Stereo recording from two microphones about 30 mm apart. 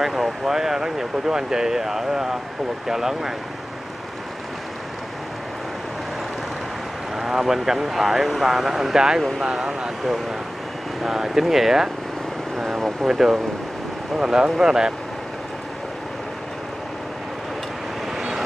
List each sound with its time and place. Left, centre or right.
0.0 s speech: centre
7.2 s speech: centre
14.1 s speech: right